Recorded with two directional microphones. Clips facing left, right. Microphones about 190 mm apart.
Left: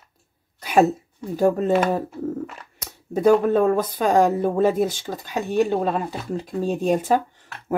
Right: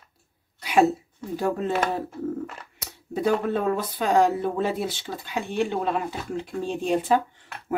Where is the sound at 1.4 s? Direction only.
45° left (ahead or behind).